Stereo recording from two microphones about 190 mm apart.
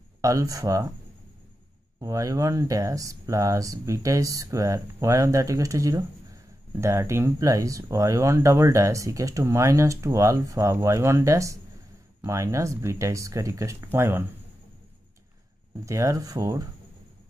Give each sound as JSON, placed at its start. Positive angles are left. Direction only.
{"t": 0.2, "sound": "speech", "side_deg": -15}
{"t": 2.0, "sound": "speech", "side_deg": -20}
{"t": 15.8, "sound": "speech", "side_deg": -15}